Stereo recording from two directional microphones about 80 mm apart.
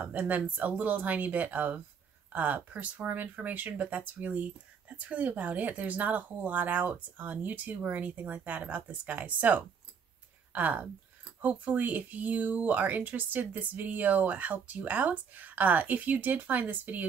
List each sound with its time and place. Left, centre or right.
0.0 s speech: centre